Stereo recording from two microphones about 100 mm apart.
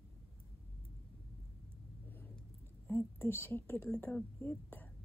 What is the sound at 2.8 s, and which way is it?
A woman's voice, 25° left (ahead or behind).